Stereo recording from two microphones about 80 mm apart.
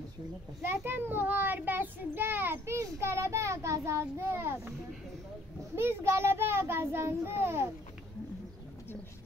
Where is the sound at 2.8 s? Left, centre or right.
Right.